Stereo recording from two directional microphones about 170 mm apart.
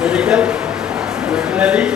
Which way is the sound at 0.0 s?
5° right (ahead or behind).